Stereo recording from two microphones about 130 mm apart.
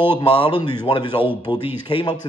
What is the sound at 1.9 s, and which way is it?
Speech, 40° left (ahead or behind).